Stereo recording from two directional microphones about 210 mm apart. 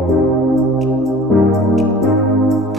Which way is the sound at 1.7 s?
Centre (ahead or behind).